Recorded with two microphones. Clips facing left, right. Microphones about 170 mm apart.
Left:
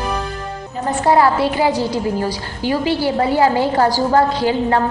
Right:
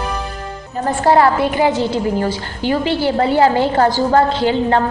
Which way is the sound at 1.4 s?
20° right (ahead or behind).